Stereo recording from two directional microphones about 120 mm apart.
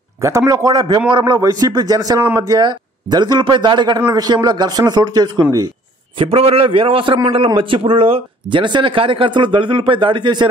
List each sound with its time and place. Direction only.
0.2 s a man's voice: 25° right (ahead or behind)
6.1 s speech: 50° right (ahead or behind)